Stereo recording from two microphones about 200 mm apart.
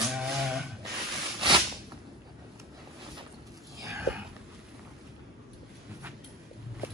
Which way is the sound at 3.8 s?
15° right (ahead or behind).